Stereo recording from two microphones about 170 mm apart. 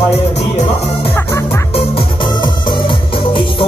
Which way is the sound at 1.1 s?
15° left (ahead or behind).